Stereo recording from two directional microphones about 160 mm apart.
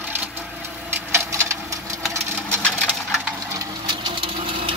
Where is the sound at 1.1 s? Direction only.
20° right (ahead or behind).